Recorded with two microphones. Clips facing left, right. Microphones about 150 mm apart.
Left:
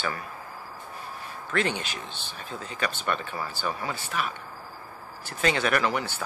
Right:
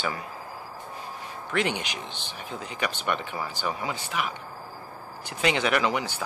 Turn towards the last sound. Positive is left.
turn(degrees=-15)  # may be behind; listen again after turning